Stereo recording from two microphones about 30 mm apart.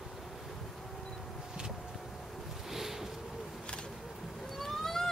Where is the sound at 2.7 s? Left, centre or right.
Centre.